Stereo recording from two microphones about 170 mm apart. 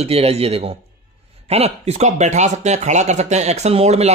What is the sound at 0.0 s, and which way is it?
Speech, 35° right (ahead or behind).